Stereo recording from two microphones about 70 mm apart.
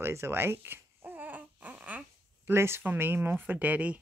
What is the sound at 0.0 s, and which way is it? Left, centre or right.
Baby cry, right.